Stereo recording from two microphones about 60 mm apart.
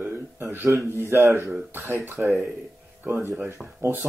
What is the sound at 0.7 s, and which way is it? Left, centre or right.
A man's voice, right.